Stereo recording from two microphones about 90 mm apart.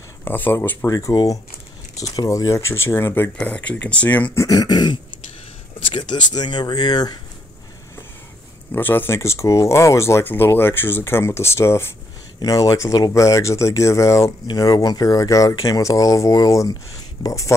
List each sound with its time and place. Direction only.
0.2 s speech: 25° left (ahead or behind)
0.8 s speech: 40° left (ahead or behind)
3.3 s speech: 15° left (ahead or behind)
4.4 s speech: 45° left (ahead or behind)
5.8 s speech: 70° left (ahead or behind); by 7.2 s 50° left (ahead or behind)
8.7 s speech: 20° left (ahead or behind)
14.5 s speech: 45° left (ahead or behind)